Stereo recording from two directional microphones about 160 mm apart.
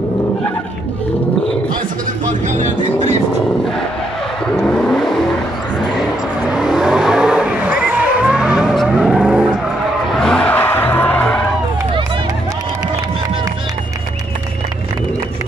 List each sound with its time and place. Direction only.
2.6 s music: 45° right (ahead or behind)
4.6 s vehicle: 10° left (ahead or behind)
6.5 s vehicle: 5° right (ahead or behind)